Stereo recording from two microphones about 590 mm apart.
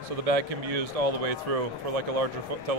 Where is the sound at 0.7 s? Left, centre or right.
Right.